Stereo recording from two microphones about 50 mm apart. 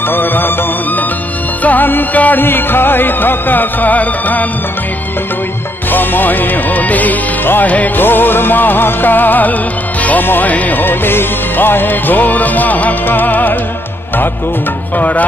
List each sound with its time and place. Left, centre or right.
0.1 s music: left
1.6 s music: left
5.9 s music: left
8.0 s music: left
15.0 s music: left